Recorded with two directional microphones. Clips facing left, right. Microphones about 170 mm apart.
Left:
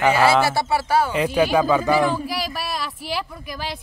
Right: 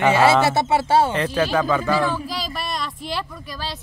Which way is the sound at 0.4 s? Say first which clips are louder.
Right 2 dB; 20° right (ahead or behind).